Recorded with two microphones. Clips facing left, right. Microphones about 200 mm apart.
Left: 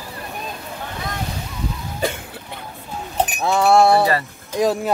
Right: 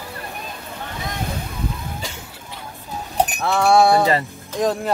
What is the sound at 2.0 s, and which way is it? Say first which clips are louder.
Cough: left 11 dB; 55° left (ahead or behind).